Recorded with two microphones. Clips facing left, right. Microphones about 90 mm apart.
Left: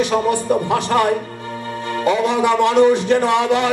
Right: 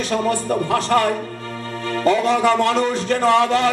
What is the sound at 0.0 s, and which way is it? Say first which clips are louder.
A man's voice: left 3 dB; 20° left (ahead or behind).